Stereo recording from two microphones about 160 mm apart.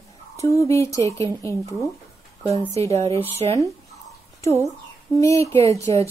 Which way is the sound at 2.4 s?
20° left (ahead or behind).